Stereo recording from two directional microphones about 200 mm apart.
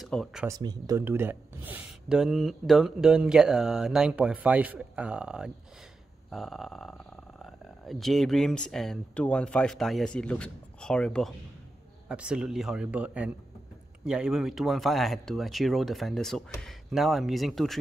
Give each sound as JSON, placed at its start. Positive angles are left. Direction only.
{"t": 0.0, "sound": "speech", "side_deg": 0}
{"t": 0.5, "sound": "speech", "side_deg": -20}